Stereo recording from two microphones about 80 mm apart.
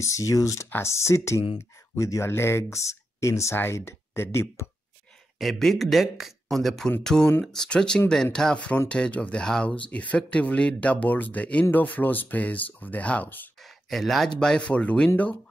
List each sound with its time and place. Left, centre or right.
0.0 s speech: left
5.4 s speech: centre; by 13.5 s left
13.6 s speech: centre